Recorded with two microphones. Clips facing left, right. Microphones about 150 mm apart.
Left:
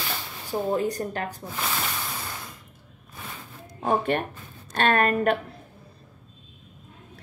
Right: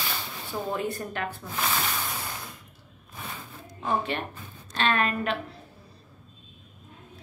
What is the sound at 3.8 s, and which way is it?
A woman's voice, 50° left (ahead or behind).